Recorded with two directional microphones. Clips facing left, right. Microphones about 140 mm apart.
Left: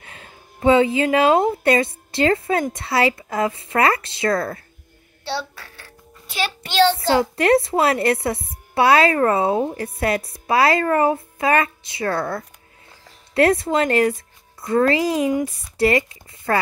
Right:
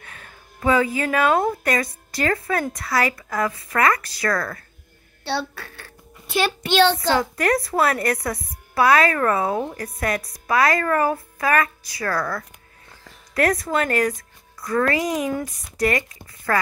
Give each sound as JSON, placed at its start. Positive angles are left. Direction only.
{"t": 0.0, "sound": "a woman's voice", "side_deg": 25}
{"t": 6.6, "sound": "a child's voice", "side_deg": -60}
{"t": 7.1, "sound": "speech", "side_deg": 25}